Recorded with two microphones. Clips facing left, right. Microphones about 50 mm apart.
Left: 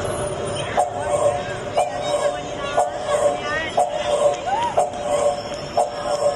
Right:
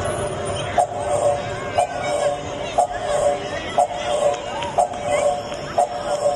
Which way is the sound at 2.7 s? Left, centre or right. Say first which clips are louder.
Even; left.